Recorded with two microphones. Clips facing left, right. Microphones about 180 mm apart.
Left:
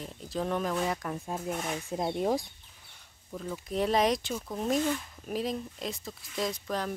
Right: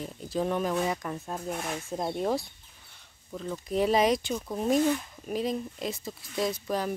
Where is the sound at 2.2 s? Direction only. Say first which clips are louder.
Even; 15° left (ahead or behind).